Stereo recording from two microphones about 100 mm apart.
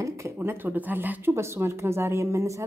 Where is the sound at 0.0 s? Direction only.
25° right (ahead or behind).